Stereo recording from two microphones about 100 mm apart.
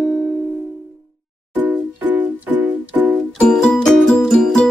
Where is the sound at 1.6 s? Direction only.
15° right (ahead or behind).